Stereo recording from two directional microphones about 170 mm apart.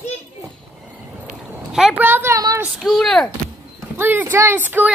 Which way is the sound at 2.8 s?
Centre (ahead or behind).